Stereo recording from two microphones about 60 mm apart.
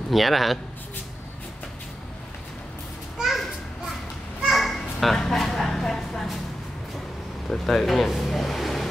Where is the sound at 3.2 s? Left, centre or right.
Centre.